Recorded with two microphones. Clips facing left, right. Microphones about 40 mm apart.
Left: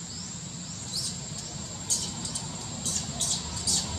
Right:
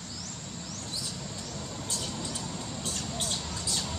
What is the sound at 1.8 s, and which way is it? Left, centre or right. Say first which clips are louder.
Vehicle: even; centre.